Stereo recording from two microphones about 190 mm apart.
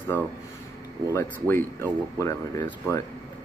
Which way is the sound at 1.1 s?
15° left (ahead or behind).